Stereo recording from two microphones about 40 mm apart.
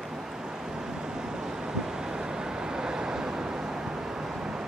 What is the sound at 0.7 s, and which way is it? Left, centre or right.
Vehicle, centre.